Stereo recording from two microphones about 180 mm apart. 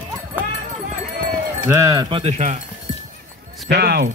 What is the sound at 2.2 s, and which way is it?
Speech, 40° right (ahead or behind).